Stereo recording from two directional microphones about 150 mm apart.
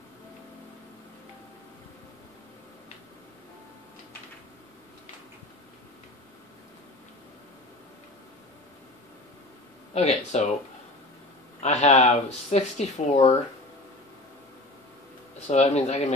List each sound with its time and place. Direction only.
9.9 s speech: 50° left (ahead or behind)
11.6 s speech: 45° left (ahead or behind)
15.4 s speech: 50° left (ahead or behind)